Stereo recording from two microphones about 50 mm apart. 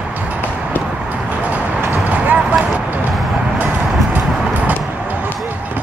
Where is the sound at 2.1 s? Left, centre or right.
Right.